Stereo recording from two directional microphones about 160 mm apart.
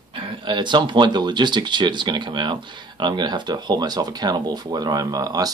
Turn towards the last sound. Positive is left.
turn(degrees=-25)  # may be behind; listen again after turning